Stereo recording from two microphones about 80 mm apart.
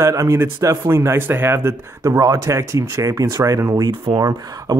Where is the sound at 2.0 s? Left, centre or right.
Right.